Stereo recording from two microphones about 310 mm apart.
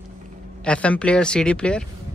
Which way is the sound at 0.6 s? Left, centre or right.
Centre.